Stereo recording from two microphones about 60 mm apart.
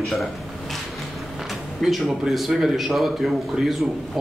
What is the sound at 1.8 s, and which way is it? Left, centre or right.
Speech, centre.